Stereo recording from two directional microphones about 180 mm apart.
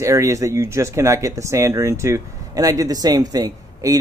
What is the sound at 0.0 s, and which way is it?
Speech, 15° right (ahead or behind).